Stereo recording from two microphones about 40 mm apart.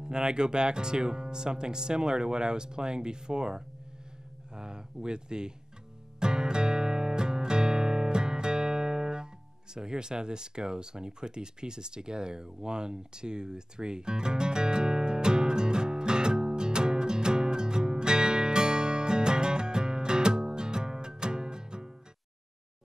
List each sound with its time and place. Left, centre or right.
0.0 s speech: centre
6.1 s music: right
9.8 s a sound: centre